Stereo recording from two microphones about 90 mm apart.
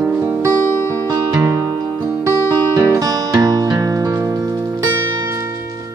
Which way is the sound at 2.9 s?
40° right (ahead or behind).